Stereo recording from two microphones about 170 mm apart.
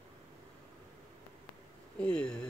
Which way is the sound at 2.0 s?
5° left (ahead or behind).